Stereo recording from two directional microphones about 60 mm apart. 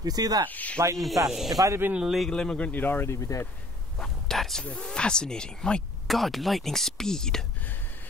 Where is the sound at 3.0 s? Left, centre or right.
Left.